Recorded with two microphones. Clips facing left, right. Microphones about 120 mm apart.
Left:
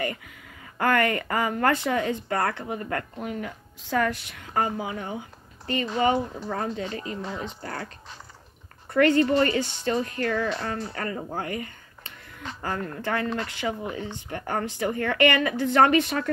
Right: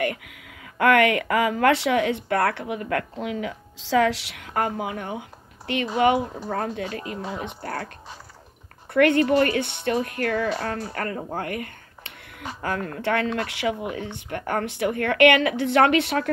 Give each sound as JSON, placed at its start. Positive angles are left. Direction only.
{"t": 0.0, "sound": "a woman's voice", "side_deg": -75}
{"t": 7.1, "sound": "speech", "side_deg": -5}
{"t": 7.4, "sound": "a woman's voice", "side_deg": -55}
{"t": 8.9, "sound": "a woman's voice", "side_deg": -60}
{"t": 11.3, "sound": "a sound", "side_deg": -60}
{"t": 12.6, "sound": "a woman's voice", "side_deg": -70}